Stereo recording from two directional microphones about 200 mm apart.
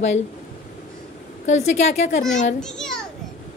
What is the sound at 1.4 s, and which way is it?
A woman's voice, 35° left (ahead or behind).